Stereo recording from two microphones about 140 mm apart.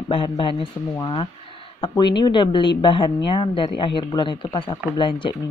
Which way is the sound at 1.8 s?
30° left (ahead or behind).